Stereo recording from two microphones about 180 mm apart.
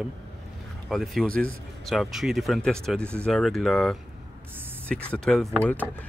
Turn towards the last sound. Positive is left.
turn(degrees=10)  # may be behind; listen again after turning